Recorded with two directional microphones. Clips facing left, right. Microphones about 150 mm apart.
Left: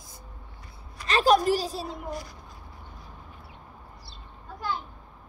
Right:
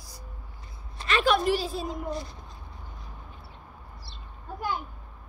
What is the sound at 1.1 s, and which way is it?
Speech, 40° left (ahead or behind).